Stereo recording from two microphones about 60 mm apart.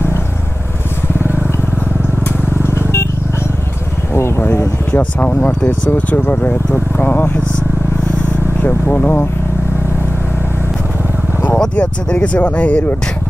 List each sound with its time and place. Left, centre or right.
2.6 s vehicle: left
4.1 s vehicle: left
4.9 s speech: left
8.9 s speech: left
11.5 s speech: centre